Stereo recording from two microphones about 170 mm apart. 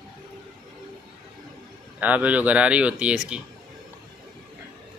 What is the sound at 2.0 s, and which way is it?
Speech, 10° right (ahead or behind).